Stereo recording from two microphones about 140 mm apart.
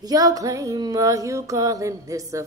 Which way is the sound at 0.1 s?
25° right (ahead or behind).